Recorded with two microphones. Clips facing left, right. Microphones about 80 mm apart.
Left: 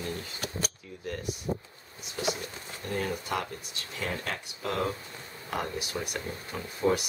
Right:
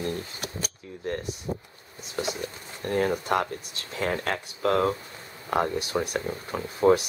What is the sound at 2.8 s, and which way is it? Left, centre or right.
Speech, right.